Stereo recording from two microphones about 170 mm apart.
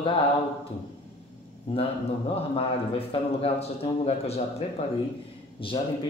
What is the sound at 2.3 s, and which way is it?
A man's voice, 35° left (ahead or behind).